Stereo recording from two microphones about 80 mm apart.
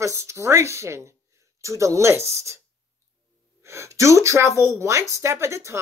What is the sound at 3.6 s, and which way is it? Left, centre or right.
A woman's voice, right.